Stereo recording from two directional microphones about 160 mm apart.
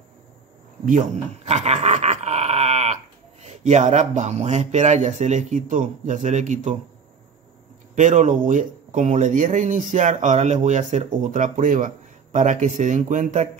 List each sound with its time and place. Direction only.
0.8 s a sound: 50° right (ahead or behind)
3.4 s speech: 45° right (ahead or behind)
7.9 s speech: 50° right (ahead or behind)